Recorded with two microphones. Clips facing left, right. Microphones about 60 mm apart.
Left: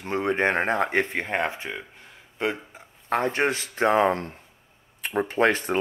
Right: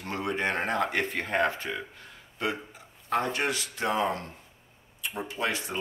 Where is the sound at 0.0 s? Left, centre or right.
Left.